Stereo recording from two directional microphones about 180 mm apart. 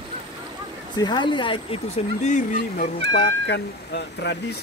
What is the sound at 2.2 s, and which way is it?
Speech, 40° left (ahead or behind).